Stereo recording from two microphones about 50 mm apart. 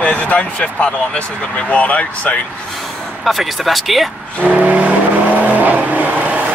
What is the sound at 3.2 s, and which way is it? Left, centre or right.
Speech, centre.